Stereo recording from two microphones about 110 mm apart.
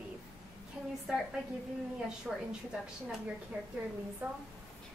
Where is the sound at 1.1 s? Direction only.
5° right (ahead or behind).